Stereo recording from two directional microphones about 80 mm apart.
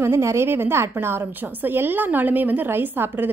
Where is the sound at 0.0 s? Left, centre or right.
Right.